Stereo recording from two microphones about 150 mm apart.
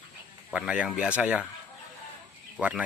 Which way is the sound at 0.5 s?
5° right (ahead or behind).